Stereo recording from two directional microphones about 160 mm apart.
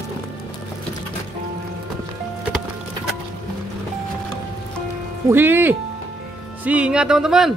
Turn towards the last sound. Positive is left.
turn(degrees=-5)  # may be behind; listen again after turning